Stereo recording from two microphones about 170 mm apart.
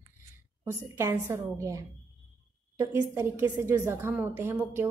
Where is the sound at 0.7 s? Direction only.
15° right (ahead or behind).